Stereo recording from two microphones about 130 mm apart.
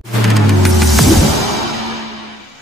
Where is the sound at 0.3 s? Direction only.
Centre (ahead or behind).